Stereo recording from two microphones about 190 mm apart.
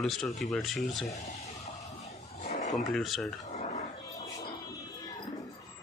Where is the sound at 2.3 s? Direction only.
35° left (ahead or behind).